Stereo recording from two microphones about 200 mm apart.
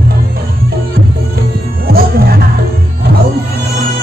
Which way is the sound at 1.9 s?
50° right (ahead or behind).